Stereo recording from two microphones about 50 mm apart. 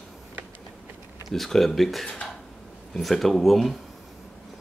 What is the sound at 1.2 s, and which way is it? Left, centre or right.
Speech, centre.